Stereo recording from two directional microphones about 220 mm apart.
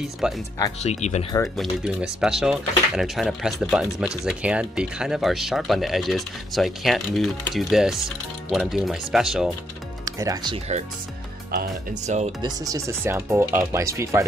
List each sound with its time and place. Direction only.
0.2 s speech: 5° right (ahead or behind)
0.8 s speech: 30° left (ahead or behind)
1.6 s speech: 5° right (ahead or behind)
10.1 s speech: 15° right (ahead or behind)
11.5 s speech: 35° right (ahead or behind)
12.4 s speech: 15° right (ahead or behind)